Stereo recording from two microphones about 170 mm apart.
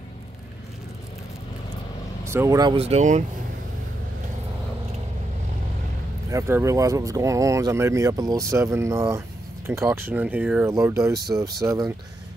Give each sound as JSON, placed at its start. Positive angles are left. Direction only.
{"t": 2.2, "sound": "speech", "side_deg": -15}
{"t": 2.7, "sound": "speech", "side_deg": -35}
{"t": 6.3, "sound": "speech", "side_deg": -15}